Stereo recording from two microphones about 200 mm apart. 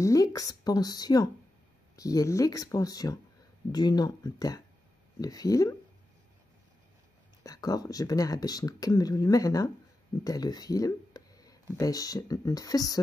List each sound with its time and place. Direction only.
0.0 s speech: 15° left (ahead or behind)
7.4 s speech: 15° left (ahead or behind)